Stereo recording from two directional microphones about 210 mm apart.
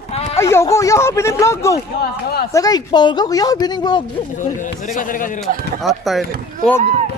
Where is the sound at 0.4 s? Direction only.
15° left (ahead or behind).